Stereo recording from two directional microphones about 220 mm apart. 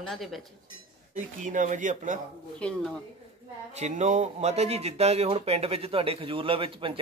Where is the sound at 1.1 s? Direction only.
35° right (ahead or behind).